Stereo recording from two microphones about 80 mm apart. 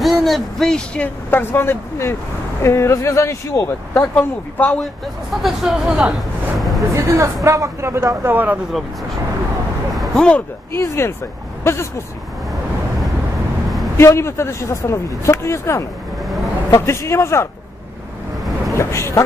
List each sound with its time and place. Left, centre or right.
0.0 s speech: centre
1.3 s a man's voice: left
4.1 s speech: centre
5.4 s speech: centre
7.0 s speech: right
8.2 s speech: right
9.9 s a sound: centre
10.7 s a man's voice: left
13.9 s a man's voice: left
18.8 s a man's voice: left